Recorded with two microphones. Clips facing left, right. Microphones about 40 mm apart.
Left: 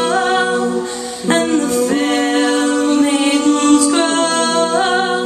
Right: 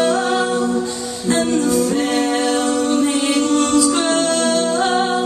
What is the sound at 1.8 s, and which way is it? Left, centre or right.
Music, left.